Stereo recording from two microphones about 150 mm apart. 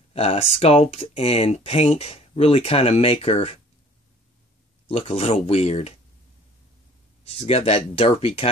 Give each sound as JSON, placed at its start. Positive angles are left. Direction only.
{"t": 0.1, "sound": "speech", "side_deg": 40}
{"t": 4.8, "sound": "speech", "side_deg": 40}
{"t": 7.3, "sound": "speech", "side_deg": 40}